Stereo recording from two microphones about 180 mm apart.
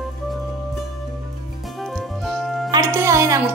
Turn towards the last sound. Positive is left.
turn(degrees=-15)  # may be behind; listen again after turning